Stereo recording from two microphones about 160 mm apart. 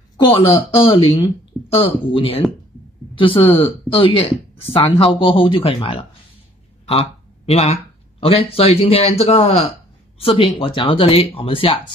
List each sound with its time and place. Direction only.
0.8 s speech: 35° left (ahead or behind)